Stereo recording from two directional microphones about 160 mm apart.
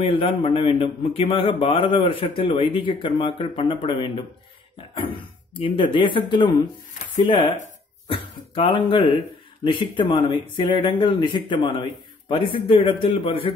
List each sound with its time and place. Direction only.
0.0 s a man's voice: 30° left (ahead or behind)